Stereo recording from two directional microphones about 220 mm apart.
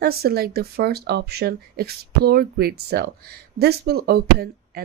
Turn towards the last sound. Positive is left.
turn(degrees=-45)  # may be behind; listen again after turning